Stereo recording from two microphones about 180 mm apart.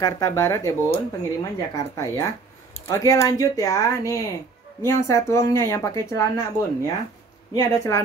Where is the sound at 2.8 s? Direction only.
20° left (ahead or behind).